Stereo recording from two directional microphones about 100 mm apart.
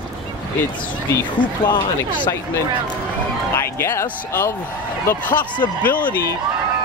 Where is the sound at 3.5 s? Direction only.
25° left (ahead or behind).